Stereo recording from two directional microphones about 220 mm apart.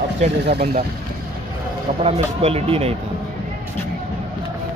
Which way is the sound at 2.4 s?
25° right (ahead or behind).